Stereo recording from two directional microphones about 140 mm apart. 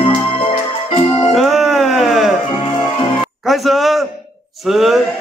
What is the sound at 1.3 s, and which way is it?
Music, centre (ahead or behind).